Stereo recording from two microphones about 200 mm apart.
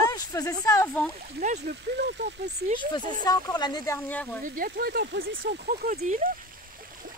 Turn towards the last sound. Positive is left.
turn(degrees=-35)  # may be behind; listen again after turning